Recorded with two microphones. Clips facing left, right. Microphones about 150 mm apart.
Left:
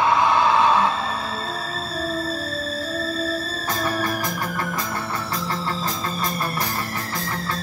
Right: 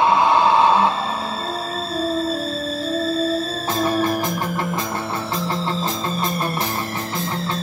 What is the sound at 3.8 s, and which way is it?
Music, 25° right (ahead or behind).